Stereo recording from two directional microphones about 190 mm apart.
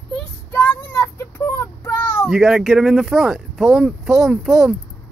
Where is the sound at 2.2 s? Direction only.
5° right (ahead or behind).